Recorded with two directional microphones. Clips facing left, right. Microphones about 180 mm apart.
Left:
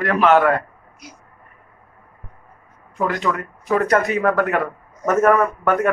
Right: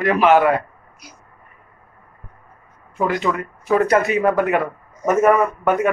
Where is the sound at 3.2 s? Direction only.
20° right (ahead or behind).